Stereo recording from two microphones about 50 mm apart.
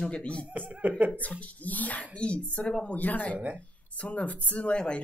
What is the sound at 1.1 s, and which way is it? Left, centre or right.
Speech, left.